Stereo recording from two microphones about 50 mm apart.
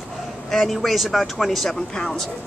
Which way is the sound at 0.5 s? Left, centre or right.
Centre.